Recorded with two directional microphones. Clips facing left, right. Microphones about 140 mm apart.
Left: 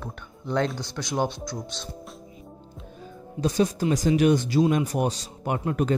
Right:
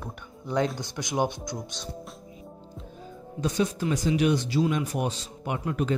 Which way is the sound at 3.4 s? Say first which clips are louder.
Left 3 dB; 35° left (ahead or behind).